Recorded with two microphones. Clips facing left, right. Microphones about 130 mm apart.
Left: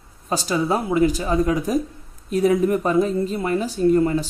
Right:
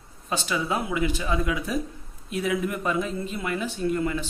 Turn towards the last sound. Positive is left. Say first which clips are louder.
# left 8 dB
turn(degrees=35)  # may be behind; listen again after turning